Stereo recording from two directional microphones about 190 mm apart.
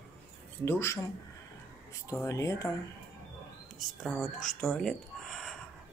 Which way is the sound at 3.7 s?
Centre (ahead or behind).